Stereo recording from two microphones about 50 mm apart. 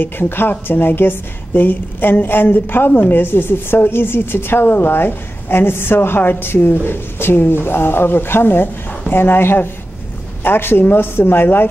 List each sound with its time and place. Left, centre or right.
0.0 s a woman's voice: left